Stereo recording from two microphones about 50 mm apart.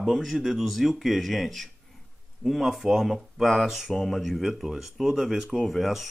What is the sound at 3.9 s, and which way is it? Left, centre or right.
Speech, centre.